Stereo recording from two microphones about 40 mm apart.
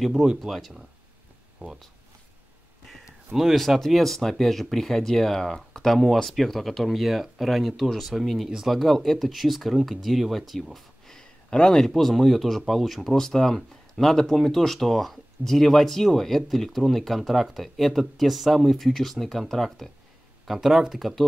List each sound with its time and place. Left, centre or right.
0.0 s speech: centre
1.6 s speech: right
3.5 s speech: centre
8.8 s speech: centre
11.5 s speech: left
11.8 s speech: centre
13.2 s speech: centre
20.4 s speech: centre